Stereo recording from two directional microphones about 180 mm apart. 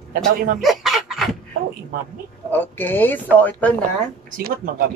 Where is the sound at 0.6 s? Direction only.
Centre (ahead or behind).